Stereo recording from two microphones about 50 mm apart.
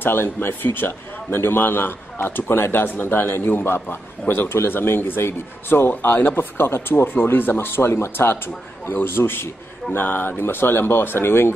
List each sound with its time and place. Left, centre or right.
0.0 s a man's voice: left